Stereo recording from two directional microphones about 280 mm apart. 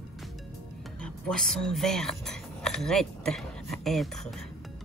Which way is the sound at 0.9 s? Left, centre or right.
Centre.